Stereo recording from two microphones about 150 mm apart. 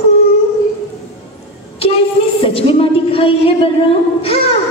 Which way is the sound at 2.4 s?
40° left (ahead or behind).